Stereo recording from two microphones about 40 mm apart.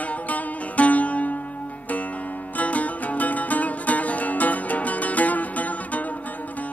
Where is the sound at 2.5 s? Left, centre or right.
Left.